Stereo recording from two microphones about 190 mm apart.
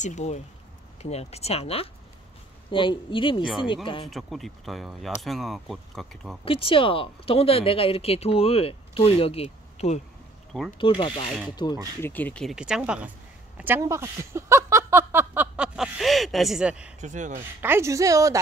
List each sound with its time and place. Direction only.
0.0 s speech: 40° left (ahead or behind)
4.1 s speech: centre (ahead or behind)
6.4 s speech: 30° left (ahead or behind)
12.0 s speech: 10° left (ahead or behind)
17.0 s speech: 40° right (ahead or behind)
17.4 s speech: 10° right (ahead or behind)